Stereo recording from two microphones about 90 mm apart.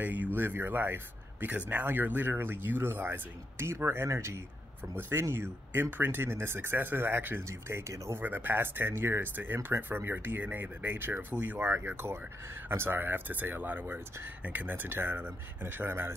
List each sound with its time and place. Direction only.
0.0 s speech: 20° right (ahead or behind); by 8.2 s 35° right (ahead or behind)
8.2 s speech: 20° right (ahead or behind)